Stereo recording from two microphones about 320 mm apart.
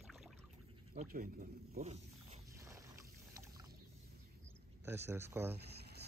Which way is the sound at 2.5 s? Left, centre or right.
Centre.